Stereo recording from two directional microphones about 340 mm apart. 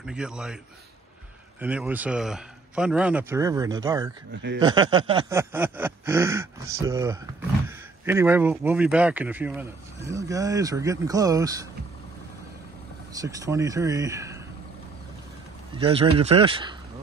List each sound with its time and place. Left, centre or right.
0.0 s speech: centre
1.6 s speech: centre
4.3 s speech: right
4.6 s speech: centre
13.2 s speech: centre
15.7 s speech: centre